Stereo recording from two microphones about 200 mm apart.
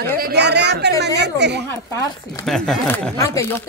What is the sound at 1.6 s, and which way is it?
Speech, 15° left (ahead or behind).